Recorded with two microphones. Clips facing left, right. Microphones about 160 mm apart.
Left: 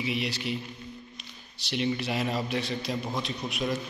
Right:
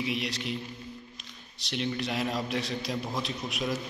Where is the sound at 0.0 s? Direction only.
Centre (ahead or behind).